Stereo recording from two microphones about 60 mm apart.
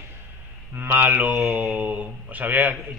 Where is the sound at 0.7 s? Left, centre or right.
Right.